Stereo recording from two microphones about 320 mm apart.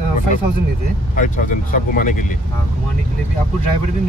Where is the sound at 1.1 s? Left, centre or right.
Left.